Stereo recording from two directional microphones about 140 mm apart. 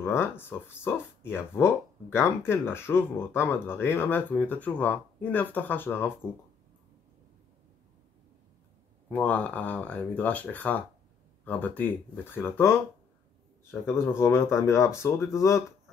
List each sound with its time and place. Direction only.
0.0 s speech: 15° left (ahead or behind)
9.1 s speech: 10° left (ahead or behind)